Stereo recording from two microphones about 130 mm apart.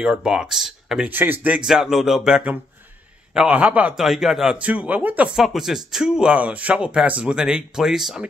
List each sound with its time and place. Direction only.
0.0 s speech: 5° right (ahead or behind)
1.7 s a man's voice: 5° right (ahead or behind)